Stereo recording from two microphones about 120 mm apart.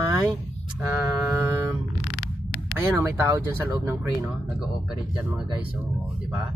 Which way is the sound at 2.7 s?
20° right (ahead or behind).